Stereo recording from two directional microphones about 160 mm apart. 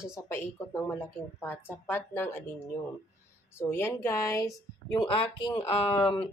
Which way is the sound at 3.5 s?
15° left (ahead or behind).